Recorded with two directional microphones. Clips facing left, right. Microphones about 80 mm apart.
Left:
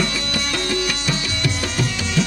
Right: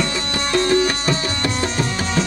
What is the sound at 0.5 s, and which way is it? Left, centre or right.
Music, right.